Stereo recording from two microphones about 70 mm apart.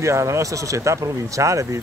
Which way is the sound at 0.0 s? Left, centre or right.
Right.